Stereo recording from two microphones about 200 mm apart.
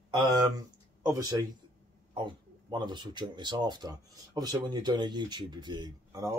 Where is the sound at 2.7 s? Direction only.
20° right (ahead or behind).